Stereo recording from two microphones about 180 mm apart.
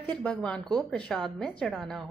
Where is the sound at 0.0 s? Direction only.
5° left (ahead or behind).